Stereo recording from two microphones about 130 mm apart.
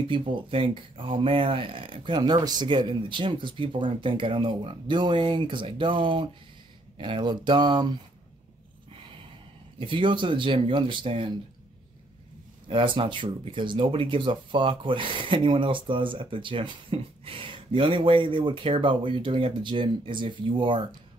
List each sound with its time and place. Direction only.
0.1 s speech: 40° right (ahead or behind)
8.9 s gasp: 45° right (ahead or behind)
9.8 s speech: 40° right (ahead or behind)
12.6 s speech: 40° right (ahead or behind)